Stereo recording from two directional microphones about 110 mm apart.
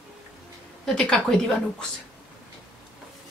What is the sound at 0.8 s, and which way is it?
Speech, 5° left (ahead or behind).